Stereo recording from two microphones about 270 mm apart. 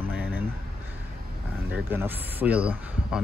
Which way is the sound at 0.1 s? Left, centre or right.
Centre.